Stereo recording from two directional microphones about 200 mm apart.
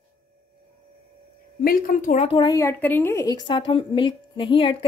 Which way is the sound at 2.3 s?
15° left (ahead or behind).